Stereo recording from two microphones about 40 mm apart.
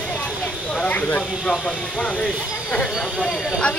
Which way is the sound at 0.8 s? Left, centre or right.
Left.